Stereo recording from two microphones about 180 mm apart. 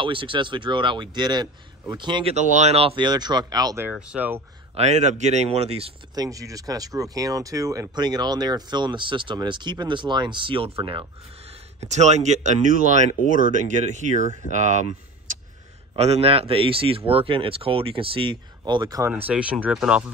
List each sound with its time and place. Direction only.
0.0 s speech: 30° right (ahead or behind)
2.3 s speech: 40° right (ahead or behind); by 4.4 s 5° right (ahead or behind)
4.7 s speech: 40° right (ahead or behind)
6.1 s speech: 20° right (ahead or behind); by 15.0 s 40° right (ahead or behind)
16.0 s speech: 35° right (ahead or behind)
19.2 s speech: 5° right (ahead or behind)